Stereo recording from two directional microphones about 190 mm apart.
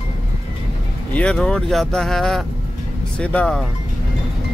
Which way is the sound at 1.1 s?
5° left (ahead or behind).